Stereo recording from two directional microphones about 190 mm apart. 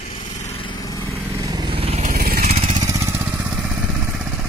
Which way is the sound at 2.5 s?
30° right (ahead or behind).